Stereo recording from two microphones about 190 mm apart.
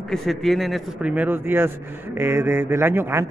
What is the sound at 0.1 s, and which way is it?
Speech, centre (ahead or behind).